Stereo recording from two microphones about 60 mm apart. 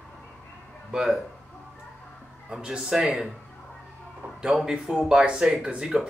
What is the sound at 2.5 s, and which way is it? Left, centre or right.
Speech, centre.